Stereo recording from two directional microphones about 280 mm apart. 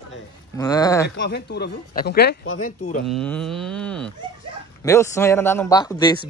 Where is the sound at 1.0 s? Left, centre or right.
Left.